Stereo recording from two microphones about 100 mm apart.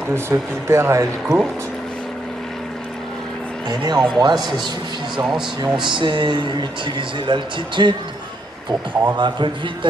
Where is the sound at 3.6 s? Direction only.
40° right (ahead or behind).